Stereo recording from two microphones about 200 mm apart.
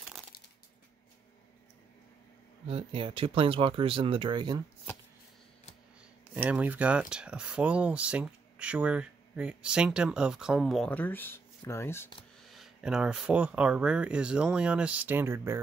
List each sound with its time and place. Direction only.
2.7 s speech: 25° right (ahead or behind)
6.3 s speech: 5° right (ahead or behind); by 12.1 s 10° left (ahead or behind)
12.4 s speech: centre (ahead or behind)